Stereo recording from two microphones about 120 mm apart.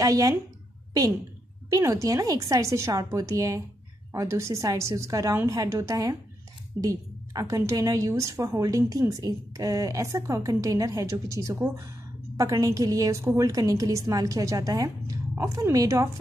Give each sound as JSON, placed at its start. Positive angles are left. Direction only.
{"t": 0.0, "sound": "a woman's voice", "side_deg": -30}
{"t": 1.7, "sound": "a woman's voice", "side_deg": -25}